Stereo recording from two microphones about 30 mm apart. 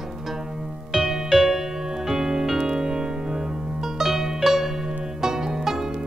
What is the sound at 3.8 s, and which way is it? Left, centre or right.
Music, centre.